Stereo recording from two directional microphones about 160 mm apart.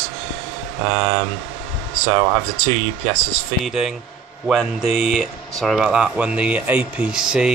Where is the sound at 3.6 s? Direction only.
Centre (ahead or behind).